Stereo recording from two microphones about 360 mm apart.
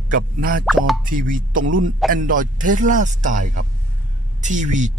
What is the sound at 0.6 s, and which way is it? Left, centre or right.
Speech, centre.